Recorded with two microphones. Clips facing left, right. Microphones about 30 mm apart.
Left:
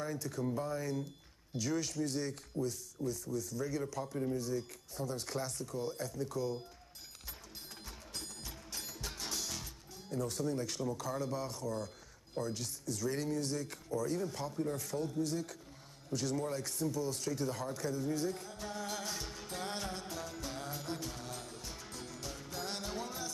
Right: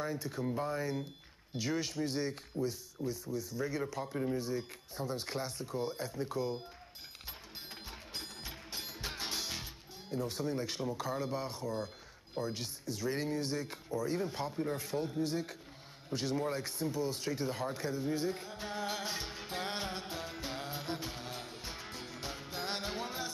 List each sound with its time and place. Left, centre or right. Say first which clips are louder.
0.0 s speech: right 1 dB; right
7.8 s music: right 1 dB; right
12.4 s speech: right 1 dB; right
16.1 s a sound: right 1 dB; right